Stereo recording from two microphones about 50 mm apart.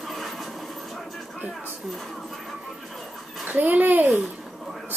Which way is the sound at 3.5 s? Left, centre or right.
Right.